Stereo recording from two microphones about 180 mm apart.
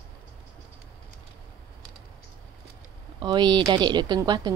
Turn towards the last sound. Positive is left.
turn(degrees=-20)  # may be behind; listen again after turning